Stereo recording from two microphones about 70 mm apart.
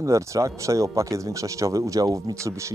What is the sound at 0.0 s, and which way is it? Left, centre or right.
Speech, right.